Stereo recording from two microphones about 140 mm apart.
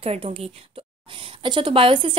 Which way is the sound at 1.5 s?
35° right (ahead or behind).